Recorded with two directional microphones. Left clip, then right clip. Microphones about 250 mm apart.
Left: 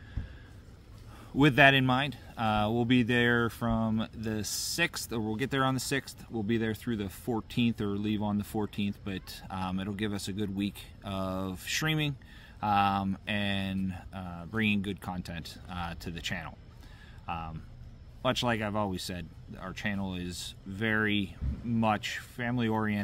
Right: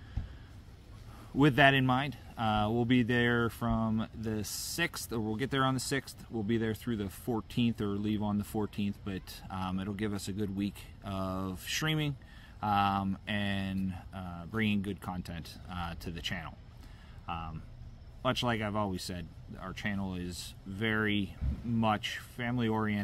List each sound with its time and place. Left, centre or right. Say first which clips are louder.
1.3 s speech: left 3 dB; centre